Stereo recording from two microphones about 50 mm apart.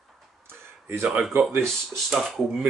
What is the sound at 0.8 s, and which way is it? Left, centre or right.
Speech, right.